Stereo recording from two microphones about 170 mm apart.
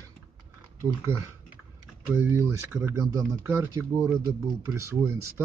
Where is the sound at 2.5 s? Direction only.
15° right (ahead or behind).